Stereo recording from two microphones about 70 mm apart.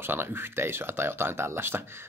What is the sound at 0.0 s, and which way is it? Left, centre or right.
Speech, right.